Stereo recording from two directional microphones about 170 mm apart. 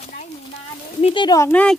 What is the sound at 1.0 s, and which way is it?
Speech, 35° left (ahead or behind).